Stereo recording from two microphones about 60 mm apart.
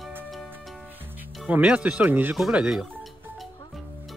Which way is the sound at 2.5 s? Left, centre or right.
Centre.